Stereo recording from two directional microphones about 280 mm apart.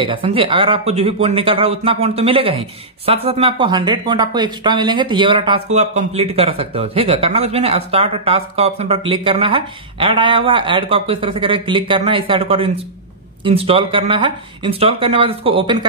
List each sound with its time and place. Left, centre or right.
0.0 s speech: centre